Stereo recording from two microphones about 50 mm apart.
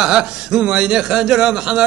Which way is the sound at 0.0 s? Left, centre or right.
Centre.